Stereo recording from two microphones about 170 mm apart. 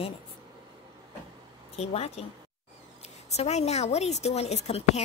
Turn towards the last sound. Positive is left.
turn(degrees=40)  # may be behind; listen again after turning